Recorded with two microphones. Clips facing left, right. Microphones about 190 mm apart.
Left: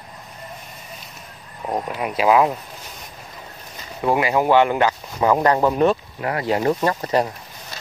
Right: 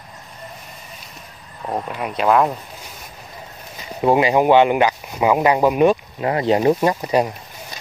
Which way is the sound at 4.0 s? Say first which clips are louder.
Right 4 dB; 20° right (ahead or behind).